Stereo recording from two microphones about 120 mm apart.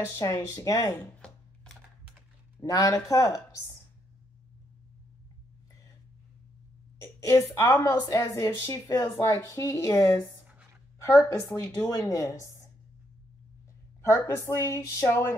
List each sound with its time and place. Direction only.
0.1 s speech: 25° left (ahead or behind)
2.6 s speech: 30° left (ahead or behind)
7.0 s a sound: 25° left (ahead or behind)
7.5 s a woman's voice: 25° left (ahead or behind)
14.0 s speech: 20° left (ahead or behind)